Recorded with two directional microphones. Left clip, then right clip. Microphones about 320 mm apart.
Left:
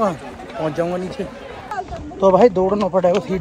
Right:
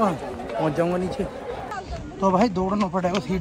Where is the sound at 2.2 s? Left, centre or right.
Centre.